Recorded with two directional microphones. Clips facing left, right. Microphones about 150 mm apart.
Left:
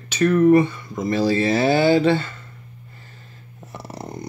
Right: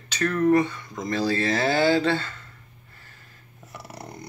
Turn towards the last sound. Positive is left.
turn(degrees=25)  # may be behind; listen again after turning